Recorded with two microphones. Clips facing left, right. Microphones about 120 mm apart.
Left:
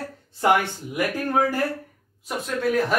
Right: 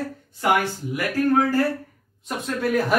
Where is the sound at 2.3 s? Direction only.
Centre (ahead or behind).